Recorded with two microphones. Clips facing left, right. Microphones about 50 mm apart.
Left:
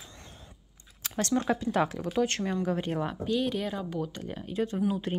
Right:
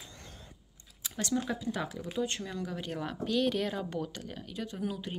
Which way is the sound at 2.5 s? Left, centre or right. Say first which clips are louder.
Left 8 dB; left.